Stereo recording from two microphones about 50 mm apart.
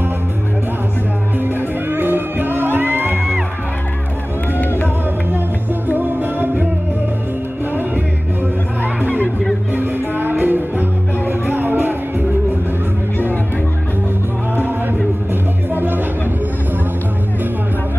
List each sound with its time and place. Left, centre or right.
1.4 s music: right
4.6 s music: left
5.9 s music: right
9.8 s music: right
15.7 s music: right